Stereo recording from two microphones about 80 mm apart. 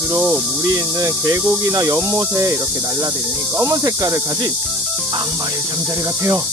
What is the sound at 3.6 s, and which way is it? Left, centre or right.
Speech, right.